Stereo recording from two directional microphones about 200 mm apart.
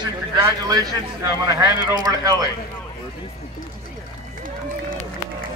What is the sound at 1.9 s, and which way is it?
Speech, 20° right (ahead or behind).